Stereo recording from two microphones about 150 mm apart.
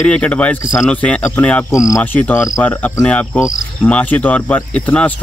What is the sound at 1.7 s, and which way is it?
Speech, 20° left (ahead or behind).